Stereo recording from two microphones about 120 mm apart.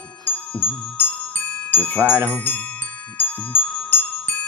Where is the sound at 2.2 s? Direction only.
10° left (ahead or behind).